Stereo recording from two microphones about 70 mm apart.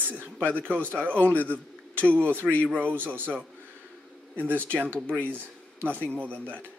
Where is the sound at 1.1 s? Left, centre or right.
Left.